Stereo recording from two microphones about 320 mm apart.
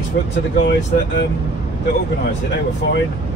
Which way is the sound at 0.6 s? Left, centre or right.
Left.